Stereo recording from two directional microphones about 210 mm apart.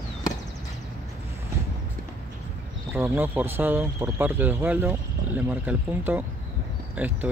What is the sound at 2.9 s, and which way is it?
Speech, 10° right (ahead or behind).